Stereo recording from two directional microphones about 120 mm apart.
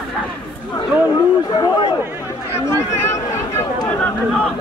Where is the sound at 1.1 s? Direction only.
40° left (ahead or behind).